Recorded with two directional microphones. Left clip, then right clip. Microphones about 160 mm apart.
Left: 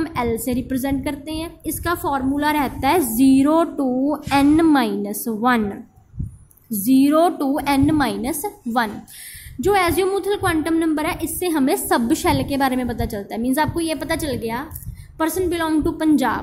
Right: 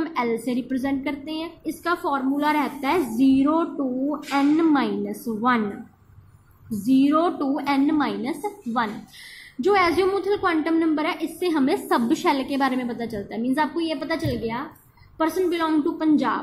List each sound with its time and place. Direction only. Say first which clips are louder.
0.0 s a woman's voice: left 2 dB; 35° left (ahead or behind)
6.9 s a woman's voice: left 4 dB; 50° left (ahead or behind)
9.6 s a woman's voice: left 2 dB; 40° left (ahead or behind)